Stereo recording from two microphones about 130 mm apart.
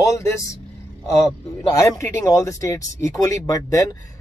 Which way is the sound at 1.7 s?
25° left (ahead or behind).